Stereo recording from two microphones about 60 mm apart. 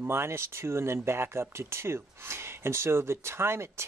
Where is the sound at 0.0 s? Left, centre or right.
Right.